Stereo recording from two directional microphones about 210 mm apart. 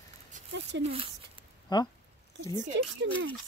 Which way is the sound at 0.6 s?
55° right (ahead or behind).